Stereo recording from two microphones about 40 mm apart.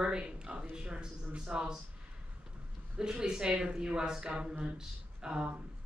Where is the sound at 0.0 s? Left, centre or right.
Right.